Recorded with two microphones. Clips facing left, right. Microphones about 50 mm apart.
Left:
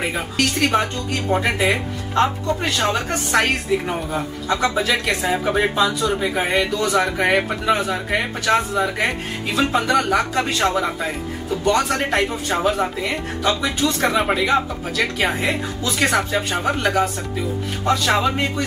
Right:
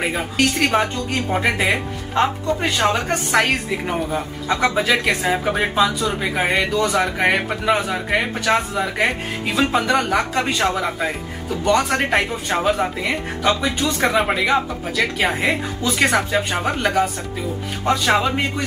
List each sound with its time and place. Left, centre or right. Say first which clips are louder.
0.1 s speech: right 2 dB; centre
12.0 s speech: right 1 dB; centre
13.4 s speech: right 1 dB; right
13.7 s speech: even; centre